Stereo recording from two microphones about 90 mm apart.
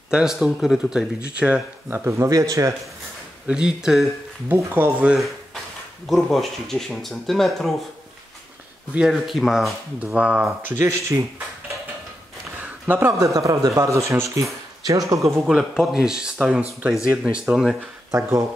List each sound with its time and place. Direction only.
0.1 s speech: 5° right (ahead or behind)
1.9 s speech: 25° right (ahead or behind)
3.4 s speech: 10° right (ahead or behind)
4.6 s speech: 30° right (ahead or behind)
5.0 s speech: 5° right (ahead or behind)
9.1 s speech: centre (ahead or behind)
9.9 s speech: 15° right (ahead or behind)
10.8 s speech: 35° right (ahead or behind)
12.8 s speech: 25° right (ahead or behind)
15.4 s speech: 5° right (ahead or behind)